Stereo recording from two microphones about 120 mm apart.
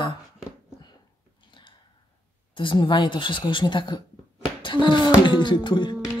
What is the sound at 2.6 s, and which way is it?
A woman's voice, 45° left (ahead or behind).